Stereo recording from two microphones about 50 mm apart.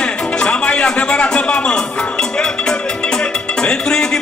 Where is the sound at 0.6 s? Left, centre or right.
Left.